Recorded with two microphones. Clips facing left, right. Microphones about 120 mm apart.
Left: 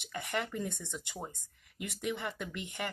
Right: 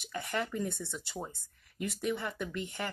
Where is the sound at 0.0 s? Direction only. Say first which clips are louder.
Right 1 dB; 20° left (ahead or behind).